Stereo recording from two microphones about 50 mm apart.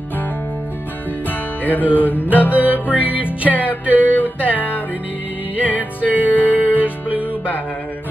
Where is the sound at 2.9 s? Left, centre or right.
Right.